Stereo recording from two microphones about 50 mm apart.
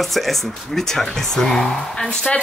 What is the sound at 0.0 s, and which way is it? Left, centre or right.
Speech, centre.